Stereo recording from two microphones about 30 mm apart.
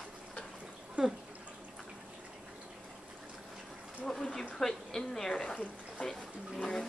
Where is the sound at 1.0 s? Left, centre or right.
Right.